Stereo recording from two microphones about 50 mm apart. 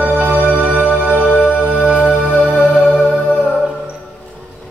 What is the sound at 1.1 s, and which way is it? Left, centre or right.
Music, left.